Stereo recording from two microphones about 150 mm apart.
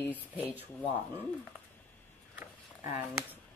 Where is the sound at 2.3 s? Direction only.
15° right (ahead or behind).